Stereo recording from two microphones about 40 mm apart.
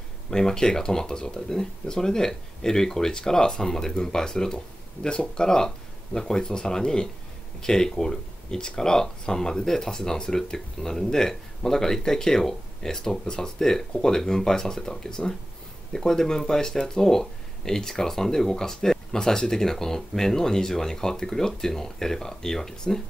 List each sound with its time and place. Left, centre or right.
0.3 s speech: centre